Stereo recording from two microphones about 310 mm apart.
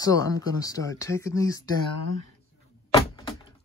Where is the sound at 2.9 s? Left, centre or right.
Centre.